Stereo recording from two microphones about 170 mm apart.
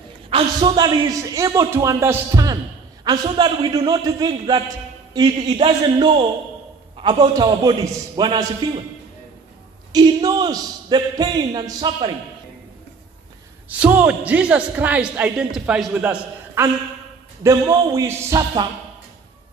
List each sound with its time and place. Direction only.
0.3 s a man's voice: 25° right (ahead or behind)
9.9 s a man's voice: 25° right (ahead or behind)
13.7 s a man's voice: 10° right (ahead or behind)
17.4 s a man's voice: 20° right (ahead or behind)